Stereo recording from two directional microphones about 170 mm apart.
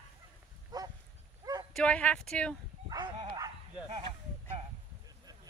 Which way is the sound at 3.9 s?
40° right (ahead or behind).